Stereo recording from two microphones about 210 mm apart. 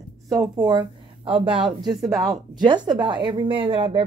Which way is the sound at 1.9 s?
Centre (ahead or behind).